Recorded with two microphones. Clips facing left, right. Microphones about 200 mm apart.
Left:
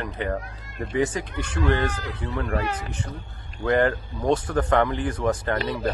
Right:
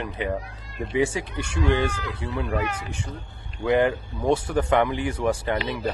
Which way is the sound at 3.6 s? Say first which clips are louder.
Even; 10° right (ahead or behind).